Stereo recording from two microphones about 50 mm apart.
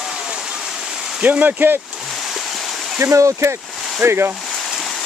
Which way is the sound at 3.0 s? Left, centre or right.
Right.